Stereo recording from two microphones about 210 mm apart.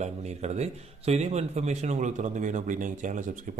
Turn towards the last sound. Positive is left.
turn(degrees=-35)  # may be behind; listen again after turning